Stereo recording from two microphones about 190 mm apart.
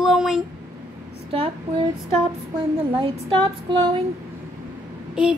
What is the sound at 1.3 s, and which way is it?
Speech, 30° right (ahead or behind).